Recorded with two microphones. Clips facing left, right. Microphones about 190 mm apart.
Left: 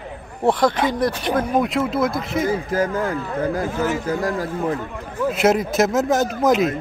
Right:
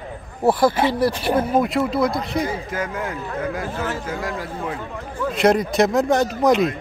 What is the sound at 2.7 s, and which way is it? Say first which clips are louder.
Speech: left 5 dB; 35° left (ahead or behind).